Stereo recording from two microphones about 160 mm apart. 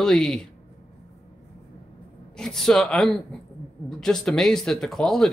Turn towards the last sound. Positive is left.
turn(degrees=5)  # may be behind; listen again after turning